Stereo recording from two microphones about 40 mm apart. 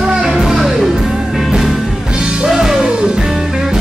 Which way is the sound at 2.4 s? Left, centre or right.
Centre.